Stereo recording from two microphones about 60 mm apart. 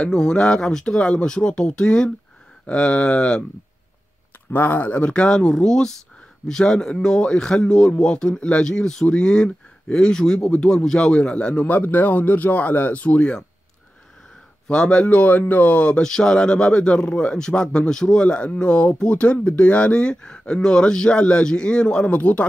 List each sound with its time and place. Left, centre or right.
0.1 s speech: centre
4.5 s speech: left
14.7 s speech: centre
16.0 s speech: centre